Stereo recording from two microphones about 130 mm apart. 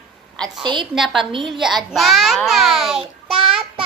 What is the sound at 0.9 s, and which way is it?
A child's voice, centre (ahead or behind).